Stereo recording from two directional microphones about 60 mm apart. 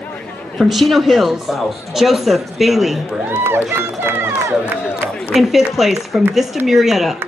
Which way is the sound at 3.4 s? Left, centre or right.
Right.